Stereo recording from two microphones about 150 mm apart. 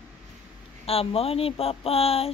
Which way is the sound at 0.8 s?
40° left (ahead or behind).